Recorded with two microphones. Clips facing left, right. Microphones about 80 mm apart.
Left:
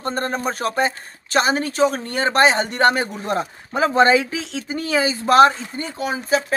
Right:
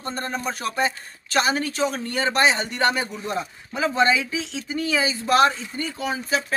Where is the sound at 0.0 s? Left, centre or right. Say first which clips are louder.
Left 5 dB; left.